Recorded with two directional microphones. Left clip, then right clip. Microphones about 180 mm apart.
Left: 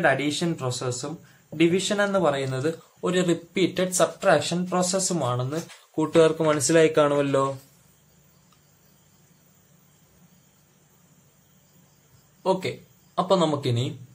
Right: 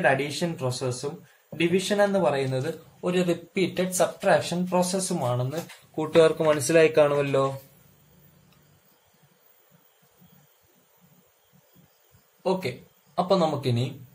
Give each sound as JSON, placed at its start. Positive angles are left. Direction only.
{"t": 0.0, "sound": "a man's voice", "side_deg": 40}
{"t": 5.9, "sound": "speech", "side_deg": 20}
{"t": 12.4, "sound": "speech", "side_deg": 35}